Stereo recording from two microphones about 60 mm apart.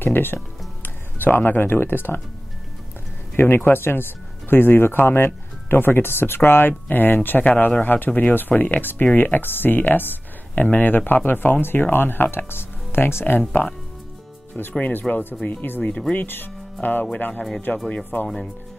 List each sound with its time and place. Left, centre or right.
0.0 s speech: left
3.3 s speech: left